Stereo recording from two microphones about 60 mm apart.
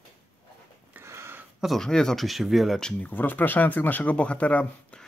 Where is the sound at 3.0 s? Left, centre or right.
Left.